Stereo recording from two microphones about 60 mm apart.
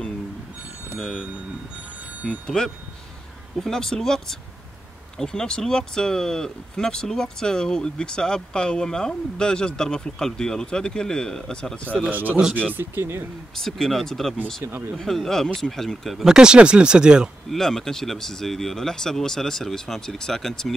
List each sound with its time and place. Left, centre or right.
0.9 s speech: centre
2.2 s speech: centre
12.1 s speech: right
13.6 s speech: centre
16.2 s speech: centre
17.5 s speech: centre